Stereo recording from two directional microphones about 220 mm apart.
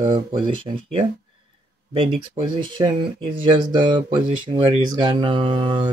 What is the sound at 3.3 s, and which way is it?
Speech, 20° right (ahead or behind).